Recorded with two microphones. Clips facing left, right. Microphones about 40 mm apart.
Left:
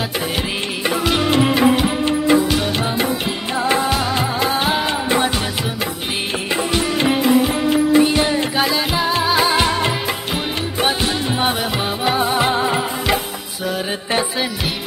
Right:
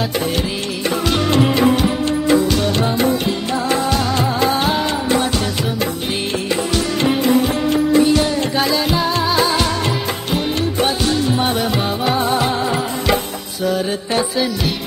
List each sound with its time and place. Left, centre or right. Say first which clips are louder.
0.8 s music: even; centre
7.9 s music: right 2 dB; left
8.5 s music: right 1 dB; centre
14.1 s music: right 1 dB; left